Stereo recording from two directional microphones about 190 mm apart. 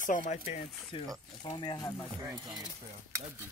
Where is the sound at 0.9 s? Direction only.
30° left (ahead or behind).